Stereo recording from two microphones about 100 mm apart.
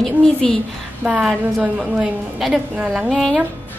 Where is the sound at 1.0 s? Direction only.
10° right (ahead or behind).